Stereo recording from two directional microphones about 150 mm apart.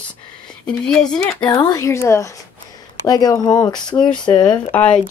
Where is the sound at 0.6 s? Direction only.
5° left (ahead or behind).